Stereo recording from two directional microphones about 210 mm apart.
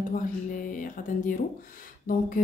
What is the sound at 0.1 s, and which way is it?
A woman's voice, 40° left (ahead or behind).